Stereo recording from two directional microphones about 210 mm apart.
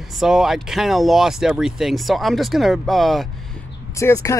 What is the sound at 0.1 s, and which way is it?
A man's voice, centre (ahead or behind).